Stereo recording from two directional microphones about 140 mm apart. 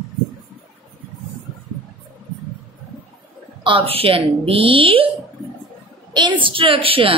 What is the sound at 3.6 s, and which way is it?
Speech, 40° right (ahead or behind).